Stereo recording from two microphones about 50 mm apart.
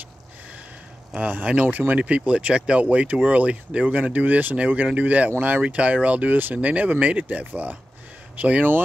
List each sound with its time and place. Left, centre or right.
1.5 s speech: right
2.0 s speech: right